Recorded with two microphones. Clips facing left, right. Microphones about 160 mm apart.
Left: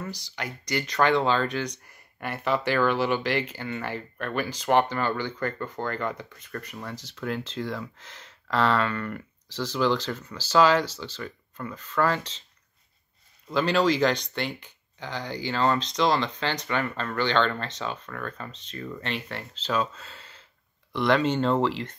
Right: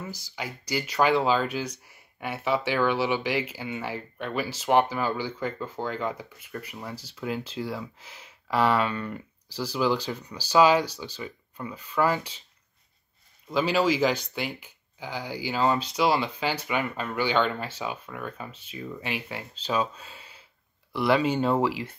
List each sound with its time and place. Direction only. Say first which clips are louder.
0.0 s speech: left 1 dB; 5° right (ahead or behind)
13.5 s speech: left 1 dB; 5° right (ahead or behind)